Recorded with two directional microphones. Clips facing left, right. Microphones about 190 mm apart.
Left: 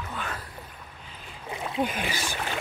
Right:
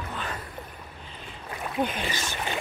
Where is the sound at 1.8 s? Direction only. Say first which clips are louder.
Even; 10° left (ahead or behind).